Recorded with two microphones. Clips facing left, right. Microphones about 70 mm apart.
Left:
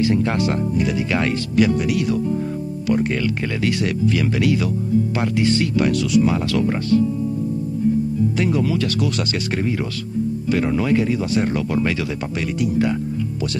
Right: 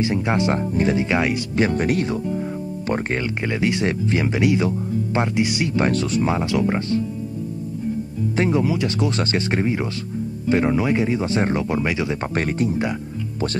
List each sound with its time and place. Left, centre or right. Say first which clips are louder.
0.0 s speech: left 2 dB; right
5.8 s speech: left 1 dB; right
8.4 s speech: right 3 dB; right
12.4 s speech: left 2 dB; right